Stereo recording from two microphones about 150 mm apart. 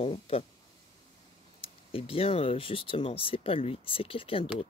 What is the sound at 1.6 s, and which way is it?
Speech, 40° left (ahead or behind).